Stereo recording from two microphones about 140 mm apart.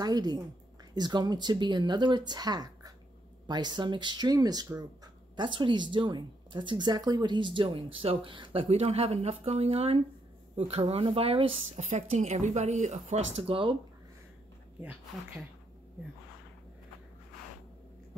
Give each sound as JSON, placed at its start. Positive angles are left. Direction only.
{"t": 0.0, "sound": "a woman's voice", "side_deg": -30}
{"t": 13.4, "sound": "speech", "side_deg": -40}